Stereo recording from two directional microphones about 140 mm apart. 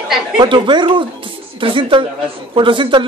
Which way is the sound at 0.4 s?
35° right (ahead or behind).